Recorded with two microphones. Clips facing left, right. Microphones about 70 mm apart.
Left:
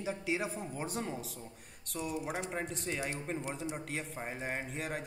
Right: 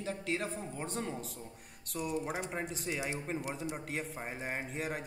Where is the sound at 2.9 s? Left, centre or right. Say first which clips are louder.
Right 1 dB; centre.